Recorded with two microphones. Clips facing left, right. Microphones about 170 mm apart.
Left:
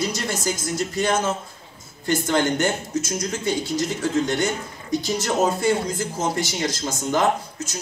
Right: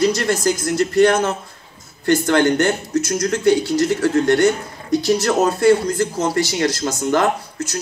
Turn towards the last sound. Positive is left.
turn(degrees=-70)  # may be behind; listen again after turning